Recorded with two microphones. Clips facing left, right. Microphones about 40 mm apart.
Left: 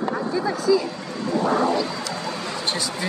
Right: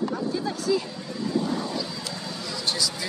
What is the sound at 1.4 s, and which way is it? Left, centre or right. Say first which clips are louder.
Speech: left 8 dB; left.